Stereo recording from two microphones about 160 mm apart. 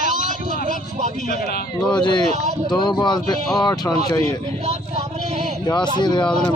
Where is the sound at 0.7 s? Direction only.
50° right (ahead or behind).